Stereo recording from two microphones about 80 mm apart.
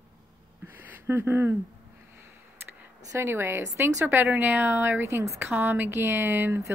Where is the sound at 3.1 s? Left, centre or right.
Right.